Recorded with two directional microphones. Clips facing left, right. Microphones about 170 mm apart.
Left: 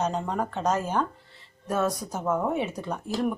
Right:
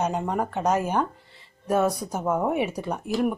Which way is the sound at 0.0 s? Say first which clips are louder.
Right 2 dB; 10° right (ahead or behind).